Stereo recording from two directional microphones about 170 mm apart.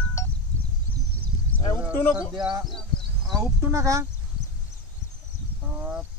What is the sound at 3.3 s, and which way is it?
Speech, 15° right (ahead or behind).